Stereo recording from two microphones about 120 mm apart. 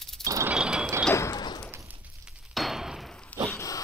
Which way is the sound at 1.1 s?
25° left (ahead or behind).